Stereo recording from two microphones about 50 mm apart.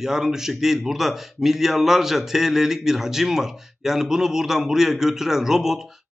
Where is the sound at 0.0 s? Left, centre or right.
Centre.